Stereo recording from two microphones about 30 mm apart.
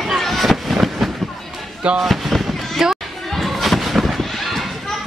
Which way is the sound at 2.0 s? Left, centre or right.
Centre.